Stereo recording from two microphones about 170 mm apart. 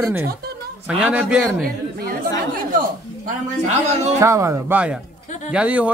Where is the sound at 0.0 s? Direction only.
15° right (ahead or behind).